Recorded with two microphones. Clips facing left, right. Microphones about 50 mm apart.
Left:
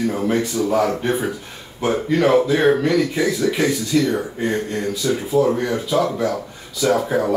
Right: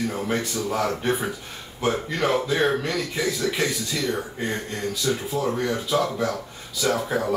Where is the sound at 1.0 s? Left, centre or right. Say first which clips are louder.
Left 3 dB; centre.